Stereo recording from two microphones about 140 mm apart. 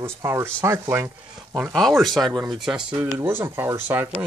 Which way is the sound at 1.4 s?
5° right (ahead or behind).